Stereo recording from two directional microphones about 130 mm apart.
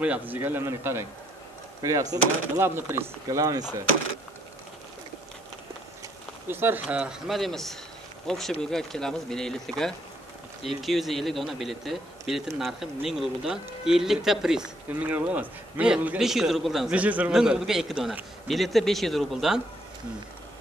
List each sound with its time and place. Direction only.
0.0 s a man's voice: 10° right (ahead or behind); by 3.6 s 30° right (ahead or behind)
6.5 s speech: 15° right (ahead or behind)